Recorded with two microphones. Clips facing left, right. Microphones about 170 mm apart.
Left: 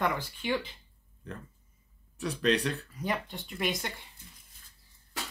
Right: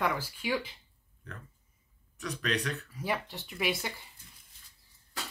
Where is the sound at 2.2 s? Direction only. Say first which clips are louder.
Left 6 dB; 30° left (ahead or behind).